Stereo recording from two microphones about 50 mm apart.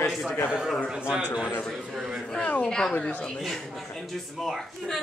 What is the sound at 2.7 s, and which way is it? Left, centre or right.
A woman's voice, centre.